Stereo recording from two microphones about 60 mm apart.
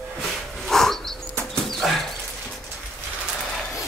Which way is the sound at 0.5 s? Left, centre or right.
Centre.